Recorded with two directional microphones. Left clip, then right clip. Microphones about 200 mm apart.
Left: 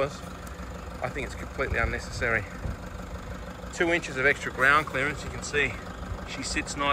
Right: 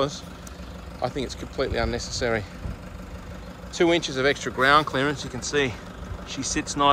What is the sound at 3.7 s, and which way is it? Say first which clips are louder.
Speech: right 4 dB; 15° right (ahead or behind).